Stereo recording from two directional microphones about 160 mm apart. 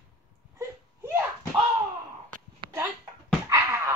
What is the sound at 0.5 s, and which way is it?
Wail, 15° right (ahead or behind).